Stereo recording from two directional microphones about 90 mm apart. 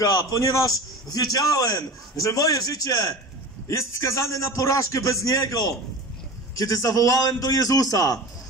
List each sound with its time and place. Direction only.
0.0 s a man's voice: 40° left (ahead or behind)